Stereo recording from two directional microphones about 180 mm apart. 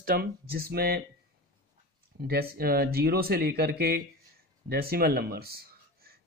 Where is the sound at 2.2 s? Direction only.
55° right (ahead or behind).